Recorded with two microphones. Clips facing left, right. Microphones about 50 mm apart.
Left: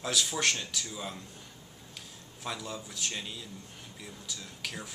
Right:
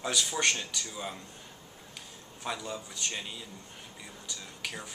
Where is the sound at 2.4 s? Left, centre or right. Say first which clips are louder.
Right 2 dB; centre.